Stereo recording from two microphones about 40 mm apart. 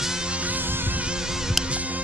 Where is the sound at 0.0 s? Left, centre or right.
Centre.